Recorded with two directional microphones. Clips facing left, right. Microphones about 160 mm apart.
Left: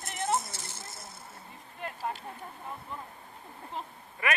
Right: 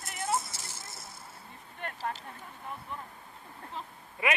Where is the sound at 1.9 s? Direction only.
15° left (ahead or behind).